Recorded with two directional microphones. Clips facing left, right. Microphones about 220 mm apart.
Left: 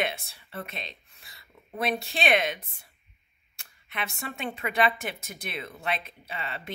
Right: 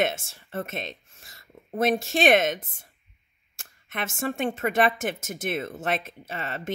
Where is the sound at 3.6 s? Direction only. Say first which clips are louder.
Right 3 dB; 50° right (ahead or behind).